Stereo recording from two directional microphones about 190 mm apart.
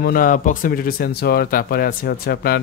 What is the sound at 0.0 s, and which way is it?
Speech, 50° left (ahead or behind).